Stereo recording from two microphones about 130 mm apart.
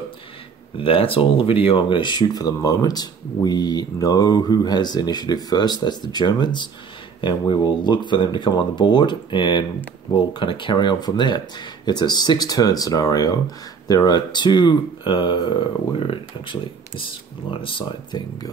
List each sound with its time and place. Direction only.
0.7 s speech: 45° left (ahead or behind)